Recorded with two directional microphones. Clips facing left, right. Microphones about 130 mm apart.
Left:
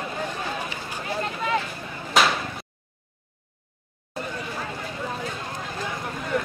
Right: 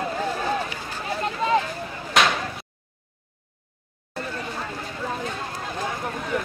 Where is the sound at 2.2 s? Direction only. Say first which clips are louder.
Even; centre (ahead or behind).